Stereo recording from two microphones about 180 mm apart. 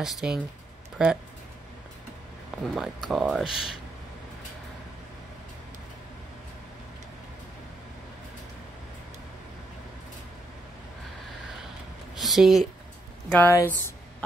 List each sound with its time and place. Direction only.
0.0 s speech: 5° right (ahead or behind)
2.7 s speech: centre (ahead or behind)
12.2 s a sound: centre (ahead or behind)
13.3 s speech: 10° left (ahead or behind)